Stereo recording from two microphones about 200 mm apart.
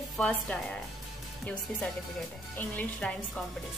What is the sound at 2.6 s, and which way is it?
Music, 5° left (ahead or behind).